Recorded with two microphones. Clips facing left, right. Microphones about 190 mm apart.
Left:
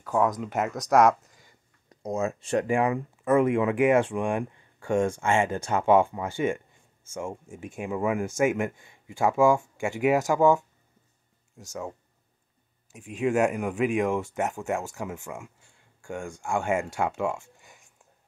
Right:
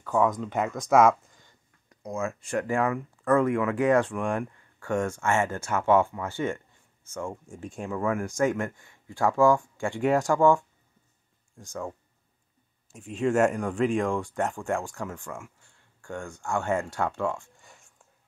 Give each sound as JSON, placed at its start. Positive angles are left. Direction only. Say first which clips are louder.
{"t": 0.0, "sound": "speech", "louder": "even", "side_deg": 5}
{"t": 2.0, "sound": "speech", "louder": "left 3 dB", "side_deg": 25}
{"t": 12.9, "sound": "speech", "louder": "even", "side_deg": 0}